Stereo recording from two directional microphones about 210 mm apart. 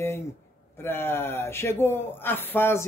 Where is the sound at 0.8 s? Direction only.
10° left (ahead or behind).